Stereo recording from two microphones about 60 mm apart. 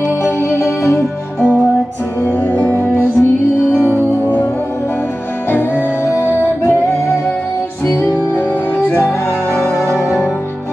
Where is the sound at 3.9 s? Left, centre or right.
Left.